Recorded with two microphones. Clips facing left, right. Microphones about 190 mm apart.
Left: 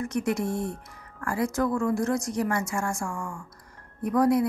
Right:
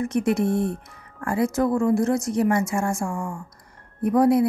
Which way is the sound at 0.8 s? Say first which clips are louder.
Right 4 dB; 20° right (ahead or behind).